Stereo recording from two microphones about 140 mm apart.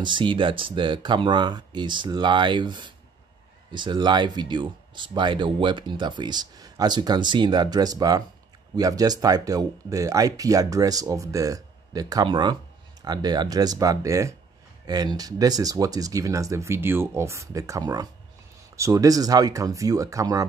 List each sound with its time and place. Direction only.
0.0 s speech: 35° right (ahead or behind)